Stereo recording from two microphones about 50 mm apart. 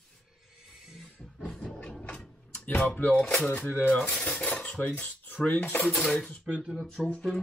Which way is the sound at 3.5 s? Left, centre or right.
Left.